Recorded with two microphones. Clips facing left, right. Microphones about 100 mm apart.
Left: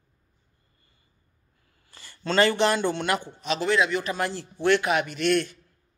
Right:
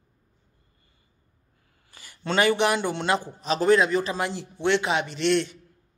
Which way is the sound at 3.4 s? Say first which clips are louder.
Right 5 dB; 40° right (ahead or behind).